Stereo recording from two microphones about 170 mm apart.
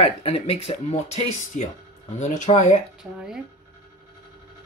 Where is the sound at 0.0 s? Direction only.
35° left (ahead or behind).